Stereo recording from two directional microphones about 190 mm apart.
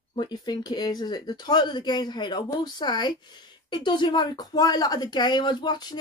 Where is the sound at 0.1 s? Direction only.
20° left (ahead or behind).